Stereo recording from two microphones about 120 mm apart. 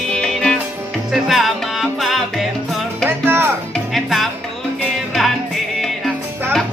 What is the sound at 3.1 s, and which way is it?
Music, 20° right (ahead or behind).